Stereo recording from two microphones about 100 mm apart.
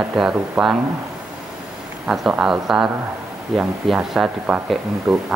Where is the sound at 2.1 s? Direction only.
5° right (ahead or behind).